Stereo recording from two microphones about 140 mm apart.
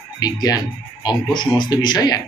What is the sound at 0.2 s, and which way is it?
Speech, 30° left (ahead or behind).